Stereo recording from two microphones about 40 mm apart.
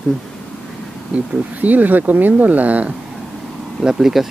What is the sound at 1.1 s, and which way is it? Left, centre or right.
Speech, right.